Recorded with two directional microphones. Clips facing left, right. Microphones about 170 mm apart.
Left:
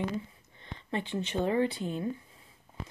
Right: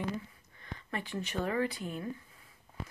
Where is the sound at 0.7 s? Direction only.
25° left (ahead or behind).